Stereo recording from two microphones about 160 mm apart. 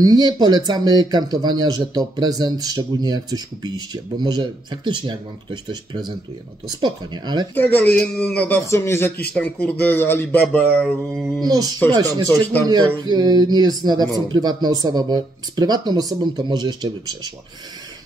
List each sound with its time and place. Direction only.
0.0 s speech: 25° right (ahead or behind)
7.5 s speech: 10° left (ahead or behind)
11.4 s speech: 25° right (ahead or behind)